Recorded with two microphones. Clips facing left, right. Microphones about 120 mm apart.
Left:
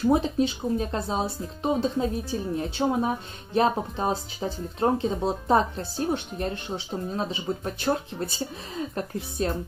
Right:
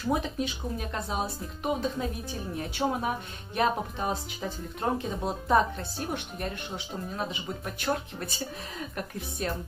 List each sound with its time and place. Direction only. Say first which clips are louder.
0.1 s a woman's voice: left 3 dB; 30° left (ahead or behind)
9.4 s speech: left 3 dB; 30° left (ahead or behind)